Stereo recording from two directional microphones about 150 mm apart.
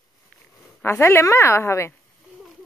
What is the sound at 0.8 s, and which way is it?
A woman's voice, 15° left (ahead or behind).